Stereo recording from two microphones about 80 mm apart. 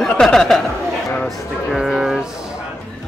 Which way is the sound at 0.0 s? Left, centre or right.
Centre.